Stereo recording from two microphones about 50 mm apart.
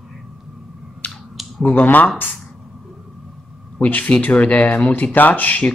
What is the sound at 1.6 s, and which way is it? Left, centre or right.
Speech, left.